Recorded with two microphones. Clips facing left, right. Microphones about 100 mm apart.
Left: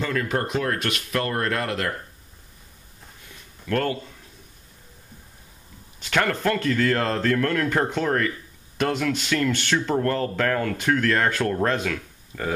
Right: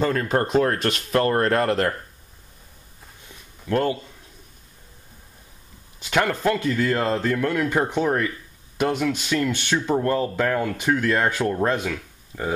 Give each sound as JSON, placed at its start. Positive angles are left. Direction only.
{"t": 0.0, "sound": "speech", "side_deg": -35}
{"t": 3.6, "sound": "speech", "side_deg": -20}
{"t": 5.9, "sound": "speech", "side_deg": -15}